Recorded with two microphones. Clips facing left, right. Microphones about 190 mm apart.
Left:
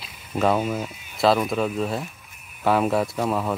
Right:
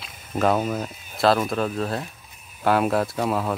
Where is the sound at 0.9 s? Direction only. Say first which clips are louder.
Right 1 dB; 40° right (ahead or behind).